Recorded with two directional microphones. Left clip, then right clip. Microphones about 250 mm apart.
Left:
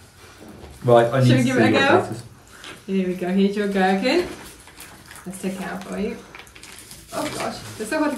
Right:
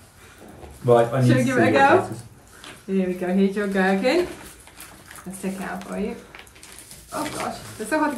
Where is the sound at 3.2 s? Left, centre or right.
Centre.